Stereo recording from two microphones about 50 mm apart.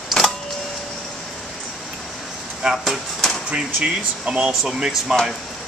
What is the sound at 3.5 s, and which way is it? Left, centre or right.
Speech, centre.